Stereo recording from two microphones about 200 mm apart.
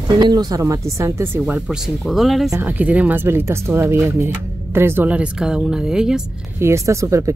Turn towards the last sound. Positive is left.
turn(degrees=-15)  # may be behind; listen again after turning